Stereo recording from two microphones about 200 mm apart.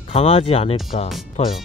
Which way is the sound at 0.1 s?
30° left (ahead or behind).